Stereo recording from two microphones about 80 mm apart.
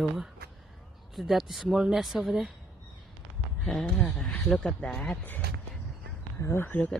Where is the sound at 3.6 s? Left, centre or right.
Centre.